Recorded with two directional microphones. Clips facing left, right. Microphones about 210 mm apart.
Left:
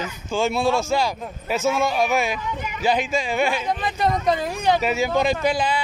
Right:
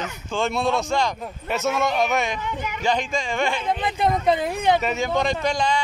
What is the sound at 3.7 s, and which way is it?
Speech, 20° right (ahead or behind).